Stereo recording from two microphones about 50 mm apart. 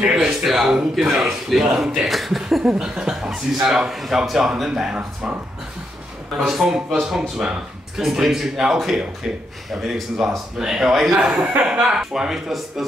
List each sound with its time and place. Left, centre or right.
0.0 s speech: centre
2.6 s speech: centre
6.4 s speech: centre; by 12.0 s right
12.0 s speech: centre